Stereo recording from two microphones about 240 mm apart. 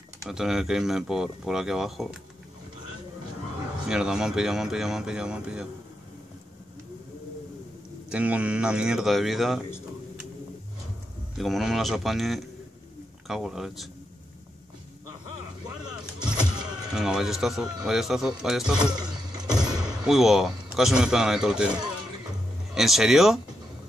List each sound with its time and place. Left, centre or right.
0.2 s speech: centre
3.8 s speech: centre
8.1 s speech: centre
11.3 s speech: centre
16.2 s music: centre
16.9 s speech: centre
18.9 s a sound: centre
20.1 s speech: centre
22.8 s speech: centre